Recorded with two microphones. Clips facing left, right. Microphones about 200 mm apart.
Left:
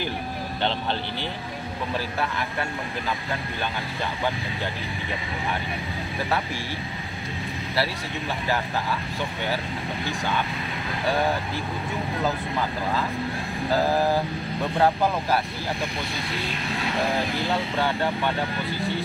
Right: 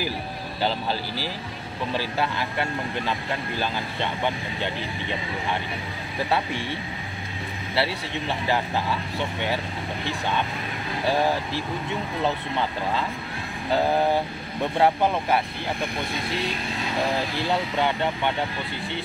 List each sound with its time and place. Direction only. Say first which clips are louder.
0.6 s speech: right 1 dB; 5° right (ahead or behind)
2.0 s speech: right 3 dB; 30° right (ahead or behind)
13.9 s speech: even; 25° right (ahead or behind)
17.7 s speech: even; 20° right (ahead or behind)